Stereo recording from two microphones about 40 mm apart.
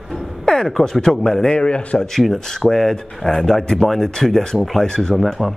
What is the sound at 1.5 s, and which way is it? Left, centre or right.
Speech, left.